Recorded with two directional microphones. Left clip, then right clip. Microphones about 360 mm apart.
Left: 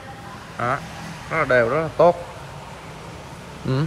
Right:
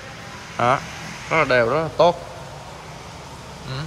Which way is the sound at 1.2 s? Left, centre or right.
Centre.